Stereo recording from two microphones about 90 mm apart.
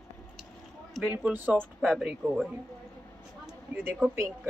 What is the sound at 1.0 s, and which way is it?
Speech, 20° right (ahead or behind).